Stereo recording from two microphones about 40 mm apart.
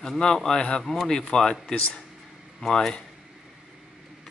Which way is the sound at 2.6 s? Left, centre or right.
Centre.